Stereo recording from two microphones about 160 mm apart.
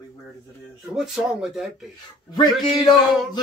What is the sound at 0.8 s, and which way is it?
Speech, 5° right (ahead or behind).